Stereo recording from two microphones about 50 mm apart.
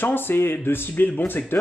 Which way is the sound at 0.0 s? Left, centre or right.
Left.